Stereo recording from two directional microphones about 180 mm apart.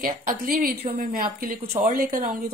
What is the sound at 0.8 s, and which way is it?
Speech, 35° right (ahead or behind).